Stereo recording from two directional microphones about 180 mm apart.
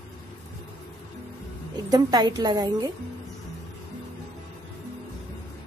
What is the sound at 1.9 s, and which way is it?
A woman's voice, 20° right (ahead or behind).